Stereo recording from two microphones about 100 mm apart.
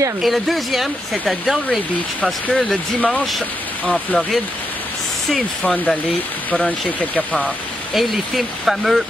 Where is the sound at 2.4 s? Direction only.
15° left (ahead or behind).